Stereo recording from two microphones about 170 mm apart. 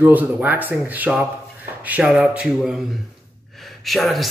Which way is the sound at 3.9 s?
Centre (ahead or behind).